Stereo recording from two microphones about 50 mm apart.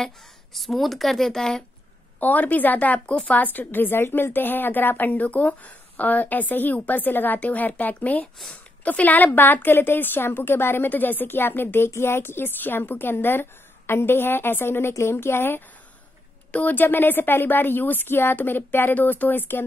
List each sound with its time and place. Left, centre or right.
0.0 s speech: centre
2.1 s a woman's voice: left
16.5 s a woman's voice: left